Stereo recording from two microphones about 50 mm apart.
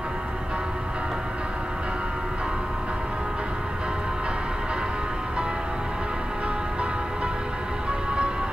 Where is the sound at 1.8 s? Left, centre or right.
Centre.